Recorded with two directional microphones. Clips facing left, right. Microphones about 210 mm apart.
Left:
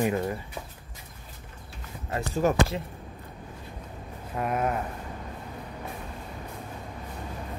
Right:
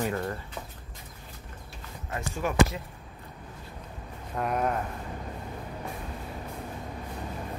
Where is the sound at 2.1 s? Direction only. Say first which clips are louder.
Left 6 dB; 35° left (ahead or behind).